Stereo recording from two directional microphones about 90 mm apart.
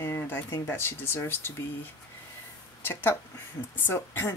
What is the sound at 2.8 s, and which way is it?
Speech, 25° left (ahead or behind).